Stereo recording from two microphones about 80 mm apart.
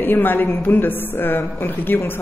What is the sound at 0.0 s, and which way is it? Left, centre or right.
Speech, left.